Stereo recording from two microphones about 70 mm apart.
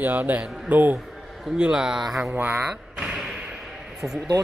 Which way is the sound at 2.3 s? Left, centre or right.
Right.